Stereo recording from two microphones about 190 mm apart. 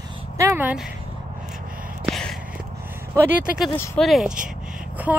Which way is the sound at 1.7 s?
45° right (ahead or behind).